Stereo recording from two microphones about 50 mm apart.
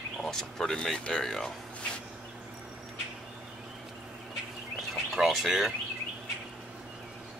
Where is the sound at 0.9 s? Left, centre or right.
Left.